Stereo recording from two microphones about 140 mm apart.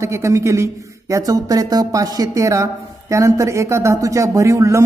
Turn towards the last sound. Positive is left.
turn(degrees=-20)  # may be behind; listen again after turning